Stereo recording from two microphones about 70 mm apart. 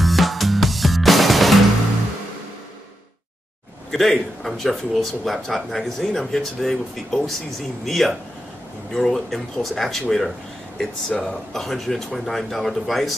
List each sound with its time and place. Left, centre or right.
0.0 s music: centre
3.9 s speech: centre